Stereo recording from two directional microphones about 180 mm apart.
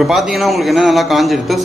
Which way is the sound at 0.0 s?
Centre (ahead or behind).